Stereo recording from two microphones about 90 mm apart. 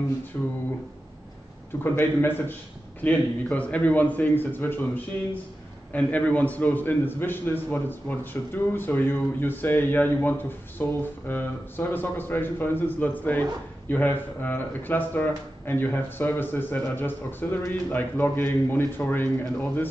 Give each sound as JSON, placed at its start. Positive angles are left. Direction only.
{"t": 0.3, "sound": "a man's voice", "side_deg": 20}
{"t": 1.8, "sound": "a man's voice", "side_deg": 25}